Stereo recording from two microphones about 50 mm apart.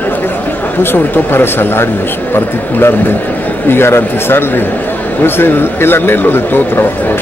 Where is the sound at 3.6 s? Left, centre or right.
Left.